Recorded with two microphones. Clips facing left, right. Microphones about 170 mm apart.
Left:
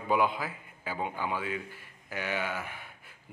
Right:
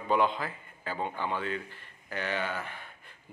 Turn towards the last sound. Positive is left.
turn(degrees=10)  # may be behind; listen again after turning